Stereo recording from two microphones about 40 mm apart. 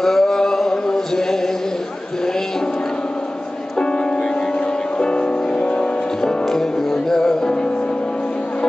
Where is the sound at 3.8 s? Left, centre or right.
Left.